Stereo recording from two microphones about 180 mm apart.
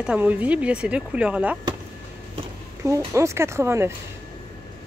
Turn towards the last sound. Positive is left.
turn(degrees=-15)  # may be behind; listen again after turning